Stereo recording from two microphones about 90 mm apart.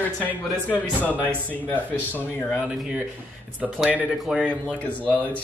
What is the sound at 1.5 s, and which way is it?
Speech, 20° left (ahead or behind).